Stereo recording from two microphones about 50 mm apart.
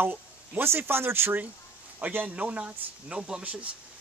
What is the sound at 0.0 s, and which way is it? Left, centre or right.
Speech, right.